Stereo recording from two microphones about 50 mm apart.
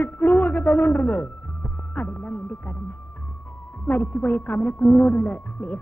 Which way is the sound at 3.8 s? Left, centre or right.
Left.